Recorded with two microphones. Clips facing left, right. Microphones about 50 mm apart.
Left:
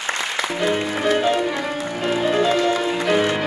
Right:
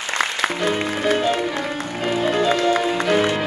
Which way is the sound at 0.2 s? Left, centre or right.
Right.